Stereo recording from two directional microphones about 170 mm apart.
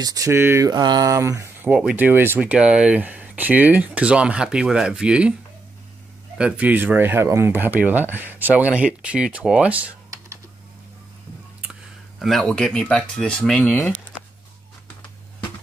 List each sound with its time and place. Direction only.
0.0 s speech: 20° right (ahead or behind)
6.3 s speech: 5° right (ahead or behind)
12.2 s speech: centre (ahead or behind)